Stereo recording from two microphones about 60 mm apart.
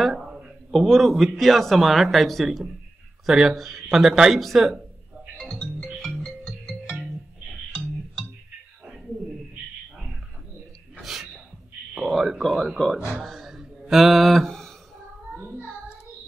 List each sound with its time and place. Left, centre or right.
0.1 s a sound: centre
0.7 s a man's voice: centre
5.4 s music: centre
11.0 s gasp: centre
12.1 s a man's voice: centre
13.2 s a sound: centre
15.3 s child singing: right